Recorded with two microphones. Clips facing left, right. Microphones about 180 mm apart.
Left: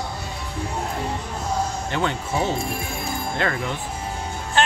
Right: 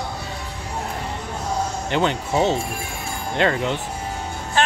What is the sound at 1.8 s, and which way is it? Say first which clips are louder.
Speech: right 3 dB; 20° right (ahead or behind).